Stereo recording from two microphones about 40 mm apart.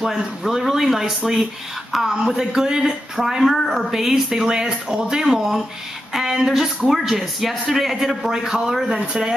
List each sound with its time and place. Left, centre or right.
0.0 s speech: centre
3.2 s speech: centre